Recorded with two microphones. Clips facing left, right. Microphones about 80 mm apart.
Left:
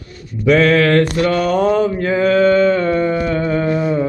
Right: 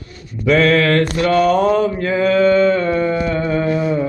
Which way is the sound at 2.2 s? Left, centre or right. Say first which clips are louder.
Even; left.